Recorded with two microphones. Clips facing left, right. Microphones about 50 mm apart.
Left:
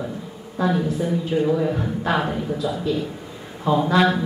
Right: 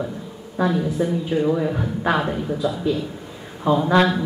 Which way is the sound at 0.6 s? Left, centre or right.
Centre.